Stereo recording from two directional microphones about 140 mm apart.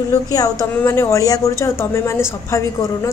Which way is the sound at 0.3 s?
25° left (ahead or behind).